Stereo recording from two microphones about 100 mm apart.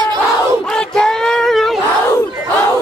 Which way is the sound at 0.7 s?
5° left (ahead or behind).